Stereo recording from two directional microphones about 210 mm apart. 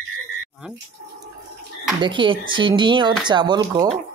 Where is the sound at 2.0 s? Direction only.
25° right (ahead or behind).